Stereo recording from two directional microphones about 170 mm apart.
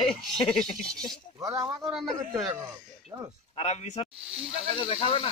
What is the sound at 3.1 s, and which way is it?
Speech, 15° right (ahead or behind).